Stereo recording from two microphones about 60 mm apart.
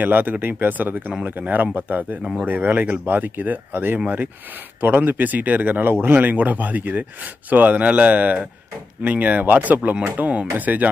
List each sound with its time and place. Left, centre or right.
0.0 s speech: right